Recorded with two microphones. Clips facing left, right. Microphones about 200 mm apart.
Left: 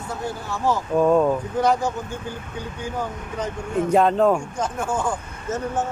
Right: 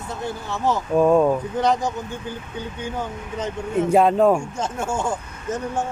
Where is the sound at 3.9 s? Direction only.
5° right (ahead or behind).